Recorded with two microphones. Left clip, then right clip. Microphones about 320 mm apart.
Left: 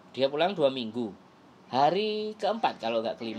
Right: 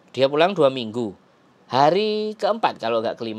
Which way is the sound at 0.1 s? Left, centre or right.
Right.